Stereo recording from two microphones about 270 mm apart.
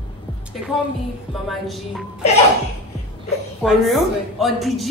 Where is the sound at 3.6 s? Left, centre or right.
Centre.